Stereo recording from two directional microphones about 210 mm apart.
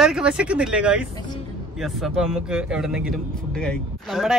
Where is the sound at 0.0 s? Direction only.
5° right (ahead or behind).